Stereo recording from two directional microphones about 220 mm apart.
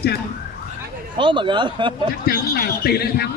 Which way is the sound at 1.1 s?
20° right (ahead or behind).